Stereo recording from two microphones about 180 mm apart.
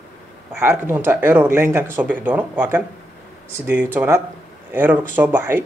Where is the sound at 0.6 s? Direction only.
15° right (ahead or behind).